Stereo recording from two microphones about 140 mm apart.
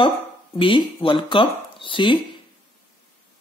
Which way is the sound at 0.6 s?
35° left (ahead or behind).